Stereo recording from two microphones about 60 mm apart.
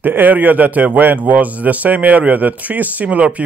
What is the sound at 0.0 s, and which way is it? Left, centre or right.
A man's voice, right.